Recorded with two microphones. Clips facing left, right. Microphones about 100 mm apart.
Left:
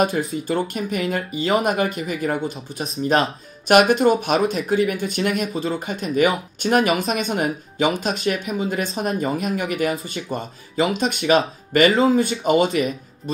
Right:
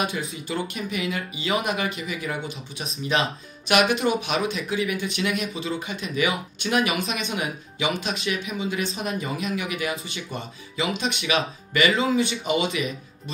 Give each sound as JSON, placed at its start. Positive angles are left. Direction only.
{"t": 0.3, "sound": "speech", "side_deg": 40}